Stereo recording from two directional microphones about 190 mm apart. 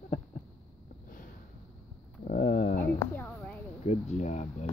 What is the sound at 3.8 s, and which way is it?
Speech, 35° left (ahead or behind).